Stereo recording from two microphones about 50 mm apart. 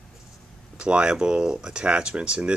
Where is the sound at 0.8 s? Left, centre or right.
Centre.